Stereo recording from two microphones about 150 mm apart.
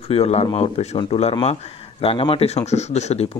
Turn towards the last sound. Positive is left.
turn(degrees=45)  # may be behind; listen again after turning